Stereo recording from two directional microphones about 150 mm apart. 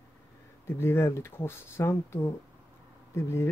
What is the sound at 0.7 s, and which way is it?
Speech, 15° left (ahead or behind).